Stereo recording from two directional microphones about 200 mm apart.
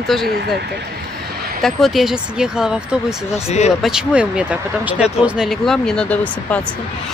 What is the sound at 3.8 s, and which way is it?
Speech, 5° right (ahead or behind).